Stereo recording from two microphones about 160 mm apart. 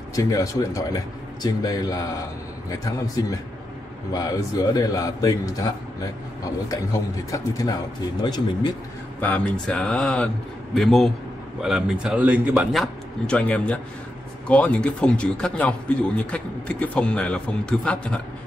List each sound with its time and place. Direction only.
0.1 s speech: 20° left (ahead or behind)
6.7 s speech: 20° left (ahead or behind)
9.2 s speech: 10° left (ahead or behind)